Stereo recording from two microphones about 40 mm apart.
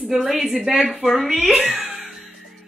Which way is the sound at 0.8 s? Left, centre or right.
Centre.